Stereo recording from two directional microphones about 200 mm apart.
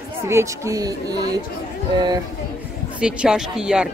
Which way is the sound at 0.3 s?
15° right (ahead or behind).